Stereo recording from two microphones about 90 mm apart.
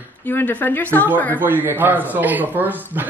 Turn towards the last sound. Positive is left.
turn(degrees=-20)  # may be behind; listen again after turning